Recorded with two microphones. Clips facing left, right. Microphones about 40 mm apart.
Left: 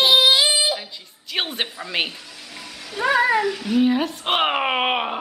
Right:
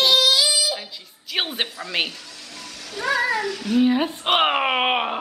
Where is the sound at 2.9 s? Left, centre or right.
Centre.